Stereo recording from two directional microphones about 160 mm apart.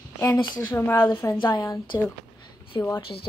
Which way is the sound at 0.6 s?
20° left (ahead or behind).